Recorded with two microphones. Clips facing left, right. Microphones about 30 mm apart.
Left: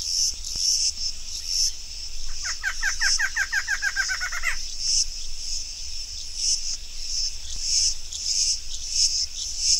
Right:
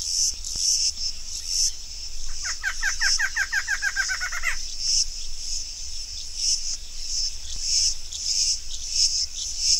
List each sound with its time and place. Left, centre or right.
0.0 s cricket: centre
0.7 s cricket: centre
2.4 s a sound: centre
6.7 s cricket: centre